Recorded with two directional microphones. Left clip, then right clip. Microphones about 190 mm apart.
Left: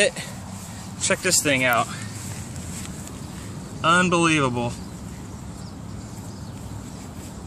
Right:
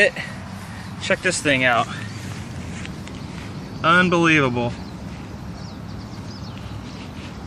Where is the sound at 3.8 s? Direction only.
10° left (ahead or behind).